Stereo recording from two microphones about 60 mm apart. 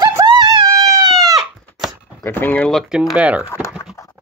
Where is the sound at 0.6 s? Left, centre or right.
Right.